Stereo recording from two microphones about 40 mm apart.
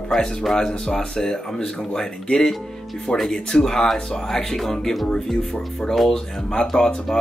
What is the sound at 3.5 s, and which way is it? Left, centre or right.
Speech, centre.